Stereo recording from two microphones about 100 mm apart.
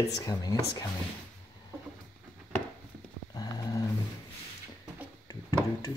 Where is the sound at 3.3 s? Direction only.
40° left (ahead or behind).